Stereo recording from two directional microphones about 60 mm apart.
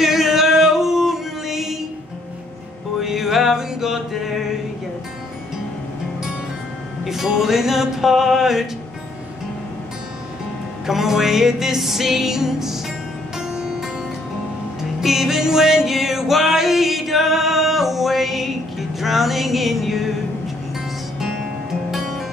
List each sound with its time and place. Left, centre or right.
0.0 s music: centre
3.0 s mantra: centre
7.1 s music: centre
10.9 s music: centre
15.0 s music: centre